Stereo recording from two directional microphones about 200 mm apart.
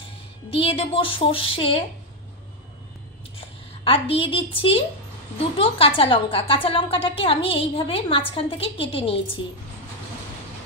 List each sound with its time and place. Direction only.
0.5 s a woman's voice: 25° left (ahead or behind)
3.3 s a woman's voice: 25° left (ahead or behind)